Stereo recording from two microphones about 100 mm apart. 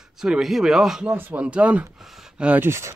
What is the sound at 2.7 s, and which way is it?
Speech, 25° right (ahead or behind).